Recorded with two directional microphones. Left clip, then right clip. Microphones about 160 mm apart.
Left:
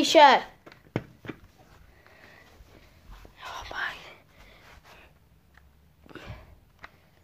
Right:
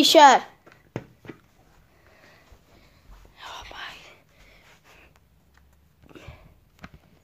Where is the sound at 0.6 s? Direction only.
55° left (ahead or behind).